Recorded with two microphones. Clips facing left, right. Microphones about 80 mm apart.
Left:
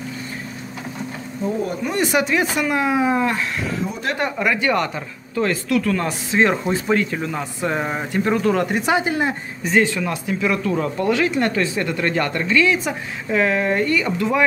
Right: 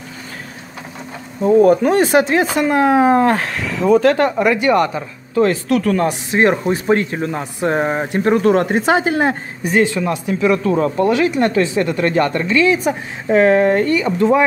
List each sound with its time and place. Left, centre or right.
1.4 s speech: right
1.9 s speech: right
4.4 s speech: right
5.7 s speech: right
6.4 s speech: centre
6.9 s speech: right
9.1 s speech: right
9.9 s speech: right
13.3 s speech: right